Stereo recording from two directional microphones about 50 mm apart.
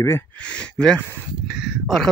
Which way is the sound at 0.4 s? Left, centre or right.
Left.